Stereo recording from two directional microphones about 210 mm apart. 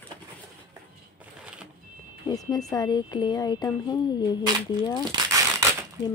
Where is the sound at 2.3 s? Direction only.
15° left (ahead or behind).